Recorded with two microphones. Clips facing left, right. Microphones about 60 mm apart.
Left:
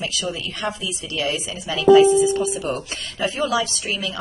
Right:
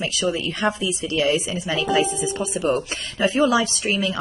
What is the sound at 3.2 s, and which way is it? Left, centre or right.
Speech, right.